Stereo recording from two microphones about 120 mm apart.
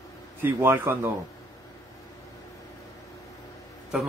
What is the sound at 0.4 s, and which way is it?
Speech, 20° right (ahead or behind).